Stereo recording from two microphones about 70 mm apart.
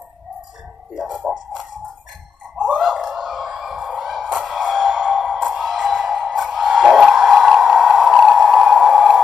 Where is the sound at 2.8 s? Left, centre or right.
Centre.